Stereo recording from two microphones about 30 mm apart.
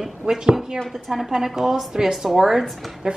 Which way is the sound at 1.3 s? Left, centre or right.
Centre.